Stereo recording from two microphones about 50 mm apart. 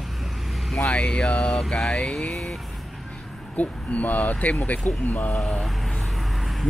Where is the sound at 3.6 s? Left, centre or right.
Left.